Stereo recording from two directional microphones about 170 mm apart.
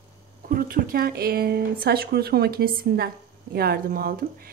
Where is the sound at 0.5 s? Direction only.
55° right (ahead or behind).